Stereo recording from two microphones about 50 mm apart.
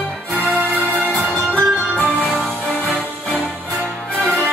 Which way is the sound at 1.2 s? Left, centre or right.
Right.